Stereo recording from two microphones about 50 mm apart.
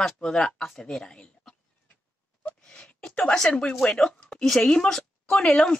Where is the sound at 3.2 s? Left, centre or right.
Centre.